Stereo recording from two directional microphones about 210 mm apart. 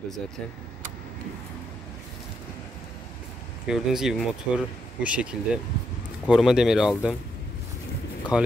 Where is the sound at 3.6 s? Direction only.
Centre (ahead or behind).